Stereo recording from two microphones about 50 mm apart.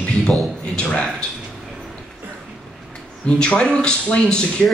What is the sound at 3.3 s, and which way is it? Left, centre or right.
Speech, centre.